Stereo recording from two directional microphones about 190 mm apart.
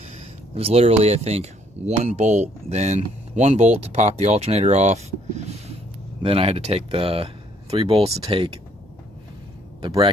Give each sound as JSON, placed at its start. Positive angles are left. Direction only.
{"t": 0.6, "sound": "speech", "side_deg": -30}
{"t": 9.8, "sound": "speech", "side_deg": -25}